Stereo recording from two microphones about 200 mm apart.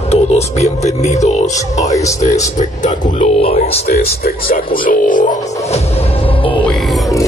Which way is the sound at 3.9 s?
50° left (ahead or behind).